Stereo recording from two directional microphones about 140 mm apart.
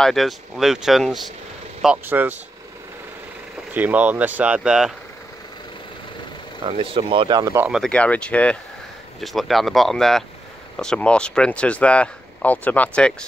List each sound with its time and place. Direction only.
0.0 s speech: centre (ahead or behind)
2.0 s speech: 15° right (ahead or behind)
3.7 s speech: 10° right (ahead or behind)
6.6 s speech: 40° right (ahead or behind)
7.5 s speech: 10° right (ahead or behind)
7.8 s speech: 10° left (ahead or behind)